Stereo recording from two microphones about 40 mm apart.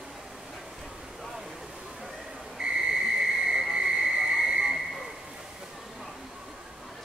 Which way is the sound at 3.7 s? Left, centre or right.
Centre.